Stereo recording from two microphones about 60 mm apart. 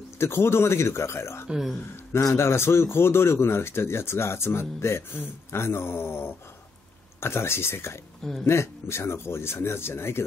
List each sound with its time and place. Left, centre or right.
0.2 s speech: left
8.2 s speech: centre
8.5 s speech: left